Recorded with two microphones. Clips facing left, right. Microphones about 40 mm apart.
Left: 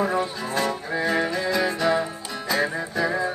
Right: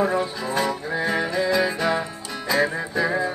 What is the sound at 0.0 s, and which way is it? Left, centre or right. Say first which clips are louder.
Speech: right 2 dB; centre.